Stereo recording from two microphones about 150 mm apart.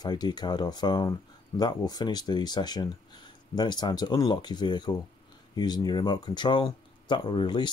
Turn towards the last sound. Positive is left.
turn(degrees=30)  # may be behind; listen again after turning